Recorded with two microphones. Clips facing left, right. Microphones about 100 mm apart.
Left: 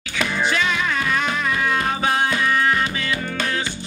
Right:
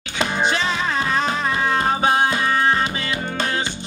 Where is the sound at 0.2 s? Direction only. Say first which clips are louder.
Right 1 dB; 25° right (ahead or behind).